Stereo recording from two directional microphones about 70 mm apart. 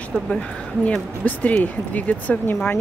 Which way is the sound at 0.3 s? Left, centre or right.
Centre.